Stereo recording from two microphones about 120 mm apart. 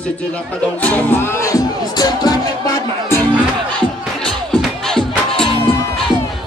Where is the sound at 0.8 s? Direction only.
15° left (ahead or behind); by 2.3 s 35° left (ahead or behind).